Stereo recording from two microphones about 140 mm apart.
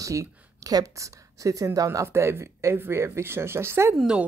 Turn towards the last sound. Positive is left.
turn(degrees=-5)  # may be behind; listen again after turning